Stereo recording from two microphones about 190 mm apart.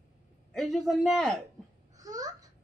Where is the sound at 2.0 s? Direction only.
20° right (ahead or behind).